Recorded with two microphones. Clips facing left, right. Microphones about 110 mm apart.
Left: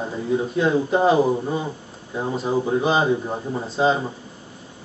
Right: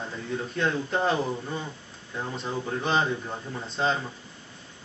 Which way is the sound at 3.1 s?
25° left (ahead or behind).